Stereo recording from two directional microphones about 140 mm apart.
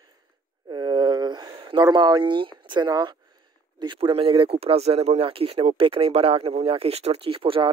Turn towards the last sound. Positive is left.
turn(degrees=-40)  # may be behind; listen again after turning